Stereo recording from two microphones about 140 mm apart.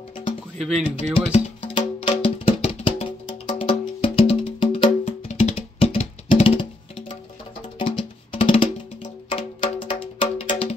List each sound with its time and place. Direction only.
0.6 s speech: centre (ahead or behind)
0.9 s music: 45° left (ahead or behind)
5.0 s music: 50° left (ahead or behind)